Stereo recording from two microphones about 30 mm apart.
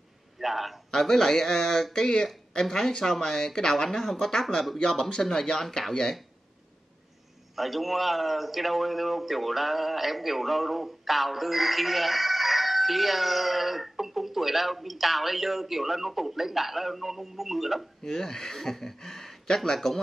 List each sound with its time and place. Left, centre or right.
0.4 s a man's voice: centre
0.9 s speech: centre
7.5 s a man's voice: centre
18.0 s speech: centre